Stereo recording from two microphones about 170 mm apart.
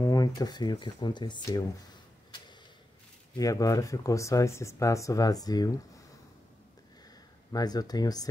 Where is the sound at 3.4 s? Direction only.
20° left (ahead or behind).